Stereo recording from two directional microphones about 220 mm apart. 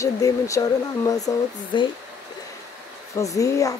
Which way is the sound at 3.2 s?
15° left (ahead or behind).